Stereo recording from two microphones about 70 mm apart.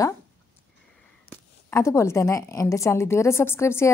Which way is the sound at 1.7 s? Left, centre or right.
Left.